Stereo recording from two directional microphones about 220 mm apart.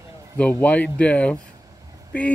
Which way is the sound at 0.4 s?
5° left (ahead or behind).